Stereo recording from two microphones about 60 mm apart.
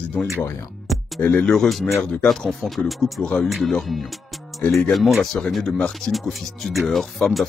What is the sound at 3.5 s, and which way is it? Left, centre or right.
Speech, centre.